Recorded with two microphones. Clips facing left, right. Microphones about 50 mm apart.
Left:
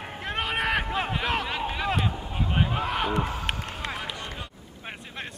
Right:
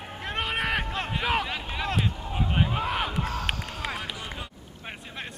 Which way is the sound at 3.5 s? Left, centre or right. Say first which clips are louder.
Left 1 dB; centre.